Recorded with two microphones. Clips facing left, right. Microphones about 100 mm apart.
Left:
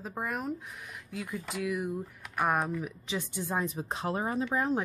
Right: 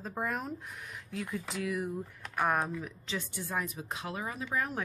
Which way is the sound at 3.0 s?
20° left (ahead or behind).